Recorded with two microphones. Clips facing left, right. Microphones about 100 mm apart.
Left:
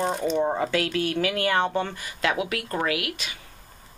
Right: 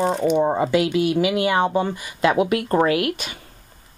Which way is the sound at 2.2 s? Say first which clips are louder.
Right 8 dB; 35° right (ahead or behind).